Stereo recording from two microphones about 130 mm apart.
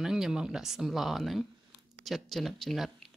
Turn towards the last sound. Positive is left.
turn(degrees=0)  # may be behind; listen again after turning